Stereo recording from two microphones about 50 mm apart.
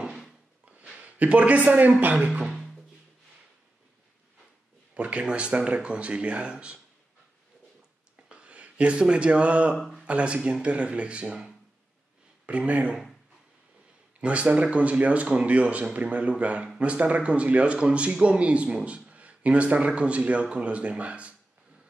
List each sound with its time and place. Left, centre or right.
0.0 s drawer open or close: centre
0.9 s speech: right
4.9 s speech: right
8.3 s speech: right
12.4 s speech: right
14.2 s speech: right